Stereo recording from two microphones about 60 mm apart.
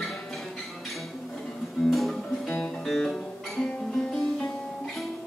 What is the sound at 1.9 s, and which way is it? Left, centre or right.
Music, centre.